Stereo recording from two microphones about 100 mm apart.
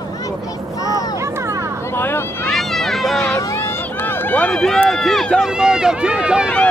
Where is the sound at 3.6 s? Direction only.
25° left (ahead or behind).